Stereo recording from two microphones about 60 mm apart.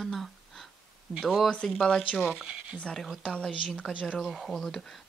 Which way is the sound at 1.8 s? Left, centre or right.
Centre.